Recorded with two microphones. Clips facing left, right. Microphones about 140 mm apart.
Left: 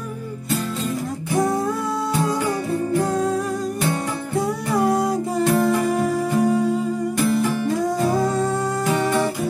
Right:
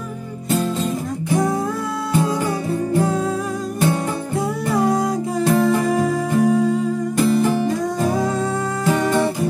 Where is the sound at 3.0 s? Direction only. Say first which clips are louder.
Even; centre (ahead or behind).